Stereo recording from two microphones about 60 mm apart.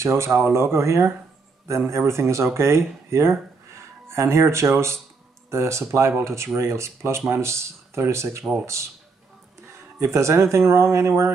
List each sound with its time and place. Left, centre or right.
0.0 s speech: right
9.9 s speech: right